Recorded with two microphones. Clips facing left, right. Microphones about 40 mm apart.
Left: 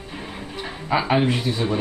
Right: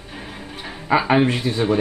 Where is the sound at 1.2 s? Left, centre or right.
Right.